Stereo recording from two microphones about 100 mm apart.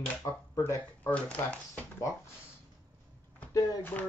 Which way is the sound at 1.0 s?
15° left (ahead or behind).